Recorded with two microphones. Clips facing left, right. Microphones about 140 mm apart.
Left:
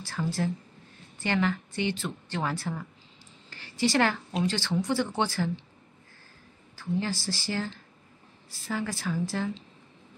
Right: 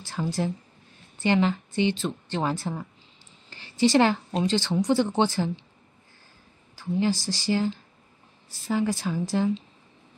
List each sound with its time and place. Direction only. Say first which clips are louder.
0.0 s speech: right 2 dB; 20° right (ahead or behind)
3.4 s a sound: right 5 dB; 20° right (ahead or behind)
4.4 s speech: right 3 dB; 20° right (ahead or behind)
6.8 s speech: right 5 dB; 15° right (ahead or behind)